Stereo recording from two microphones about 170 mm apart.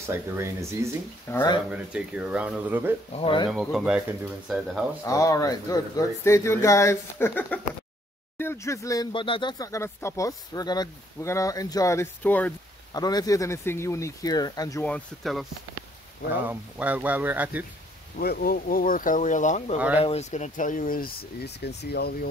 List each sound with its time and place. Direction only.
0.1 s speech: 15° right (ahead or behind)
1.3 s speech: 15° left (ahead or behind)
1.7 s speech: 5° right (ahead or behind)
3.2 s speech: 30° left (ahead or behind)
3.4 s speech: 5° right (ahead or behind)
5.0 s speech: 20° left (ahead or behind)
12.9 s speech: 20° left (ahead or behind)
14.9 s speech: 5° left (ahead or behind)
16.4 s speech: 10° right (ahead or behind)
18.2 s speech: 65° left (ahead or behind)